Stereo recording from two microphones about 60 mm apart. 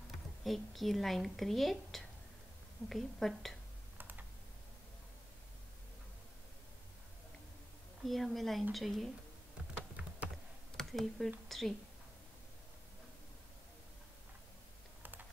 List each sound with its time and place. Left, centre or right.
0.4 s a woman's voice: centre
4.0 s computer keyboard: right
8.0 s a woman's voice: centre
10.3 s computer keyboard: centre
11.4 s a woman's voice: centre